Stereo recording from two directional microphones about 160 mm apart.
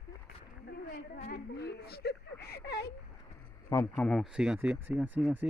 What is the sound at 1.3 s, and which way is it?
Whimper, 85° left.